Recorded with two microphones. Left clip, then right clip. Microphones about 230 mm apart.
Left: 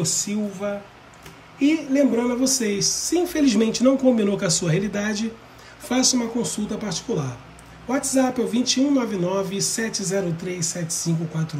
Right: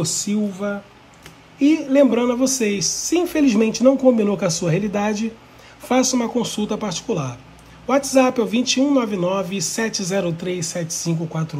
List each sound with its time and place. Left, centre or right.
0.3 s a man's voice: right
2.1 s speech: centre
4.6 s speech: centre